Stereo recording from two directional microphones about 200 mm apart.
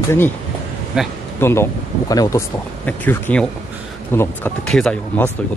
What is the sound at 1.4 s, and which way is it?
Speech, 10° left (ahead or behind).